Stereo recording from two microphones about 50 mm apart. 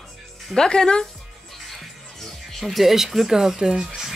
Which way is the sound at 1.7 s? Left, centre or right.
Centre.